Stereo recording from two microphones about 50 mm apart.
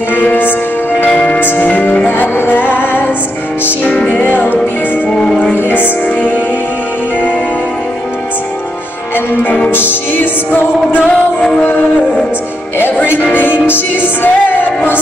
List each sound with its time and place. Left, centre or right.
0.1 s music: left
1.1 s music: left
1.4 s music: left
1.7 s music: left
4.1 s music: left
5.1 s music: centre
5.6 s music: left
9.7 s music: left
12.7 s music: left